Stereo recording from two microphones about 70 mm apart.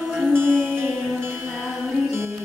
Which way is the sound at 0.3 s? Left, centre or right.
Right.